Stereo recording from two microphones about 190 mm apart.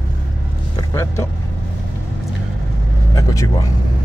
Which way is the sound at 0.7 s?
15° left (ahead or behind).